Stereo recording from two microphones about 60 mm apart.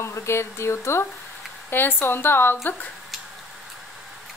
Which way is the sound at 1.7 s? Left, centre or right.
Left.